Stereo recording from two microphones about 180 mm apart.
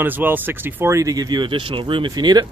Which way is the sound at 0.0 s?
10° right (ahead or behind).